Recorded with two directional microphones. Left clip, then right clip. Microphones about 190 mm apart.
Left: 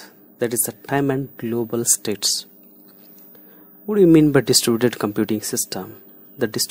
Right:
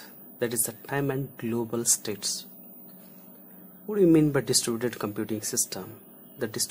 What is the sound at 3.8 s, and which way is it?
Speech, 35° left (ahead or behind).